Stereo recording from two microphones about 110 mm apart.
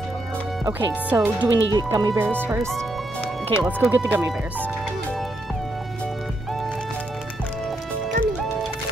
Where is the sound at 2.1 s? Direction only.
20° right (ahead or behind).